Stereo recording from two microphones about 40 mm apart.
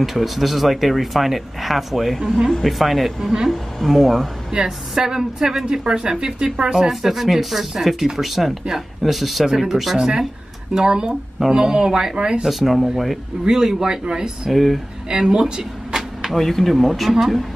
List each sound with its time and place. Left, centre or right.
0.0 s speech: centre
3.2 s speech: centre
3.4 s speech: centre
4.5 s speech: centre
6.9 s speech: centre
9.9 s speech: centre
12.4 s speech: centre
14.5 s speech: centre
15.0 s a sound: centre
16.3 s speech: centre